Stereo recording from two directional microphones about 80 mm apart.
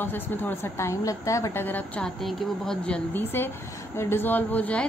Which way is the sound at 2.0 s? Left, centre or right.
Centre.